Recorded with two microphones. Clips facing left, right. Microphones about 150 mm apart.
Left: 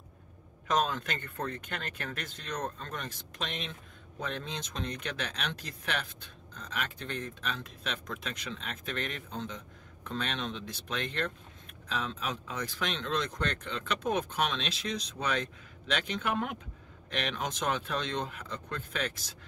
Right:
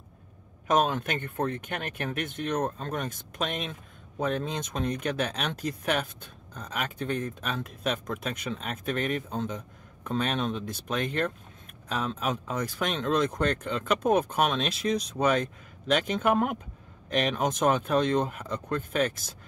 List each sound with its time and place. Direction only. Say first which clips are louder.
0.7 s speech: right 5 dB; 50° right (ahead or behind)